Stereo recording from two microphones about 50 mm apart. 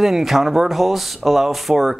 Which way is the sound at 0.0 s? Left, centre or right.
Centre.